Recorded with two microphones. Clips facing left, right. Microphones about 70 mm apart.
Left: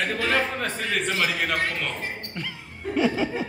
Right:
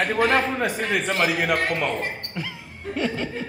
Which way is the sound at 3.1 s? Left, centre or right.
Centre.